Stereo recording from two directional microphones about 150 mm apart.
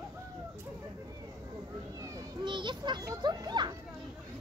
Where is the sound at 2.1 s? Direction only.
30° right (ahead or behind).